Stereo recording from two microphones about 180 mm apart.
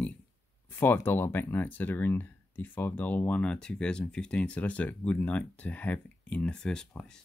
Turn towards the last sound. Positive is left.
turn(degrees=5)  # may be behind; listen again after turning